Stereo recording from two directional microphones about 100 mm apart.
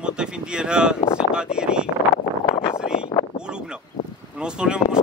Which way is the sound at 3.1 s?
30° left (ahead or behind).